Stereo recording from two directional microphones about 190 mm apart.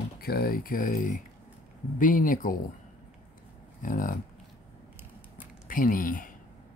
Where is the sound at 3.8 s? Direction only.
45° left (ahead or behind).